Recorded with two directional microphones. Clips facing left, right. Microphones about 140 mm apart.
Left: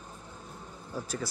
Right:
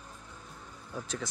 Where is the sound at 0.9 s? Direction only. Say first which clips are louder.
Left 2 dB; 5° left (ahead or behind).